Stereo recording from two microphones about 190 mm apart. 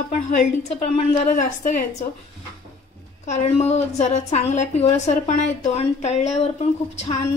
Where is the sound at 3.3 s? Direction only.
35° left (ahead or behind).